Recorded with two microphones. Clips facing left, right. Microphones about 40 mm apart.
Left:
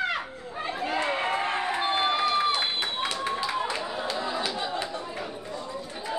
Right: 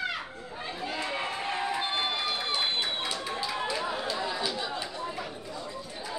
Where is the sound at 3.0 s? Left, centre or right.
Left.